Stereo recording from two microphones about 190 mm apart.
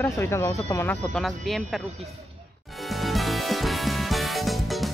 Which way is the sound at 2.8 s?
Centre (ahead or behind).